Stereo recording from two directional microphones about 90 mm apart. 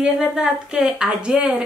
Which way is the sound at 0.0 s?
10° right (ahead or behind).